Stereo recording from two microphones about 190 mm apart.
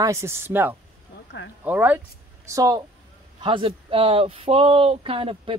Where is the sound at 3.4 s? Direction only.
30° right (ahead or behind).